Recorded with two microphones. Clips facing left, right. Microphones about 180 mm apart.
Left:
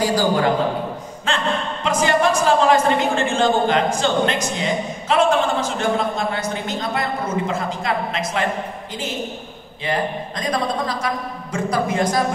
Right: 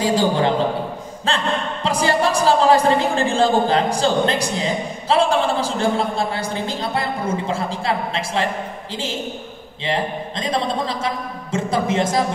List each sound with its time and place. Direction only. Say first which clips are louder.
0.0 s a man's voice: even; 25° right (ahead or behind)